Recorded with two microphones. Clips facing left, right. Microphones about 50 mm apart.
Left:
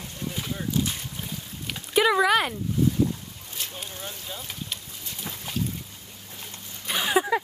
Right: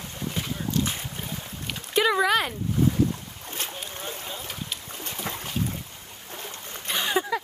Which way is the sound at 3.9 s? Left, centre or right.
Right.